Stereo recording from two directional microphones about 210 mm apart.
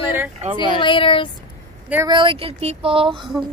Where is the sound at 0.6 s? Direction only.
25° left (ahead or behind).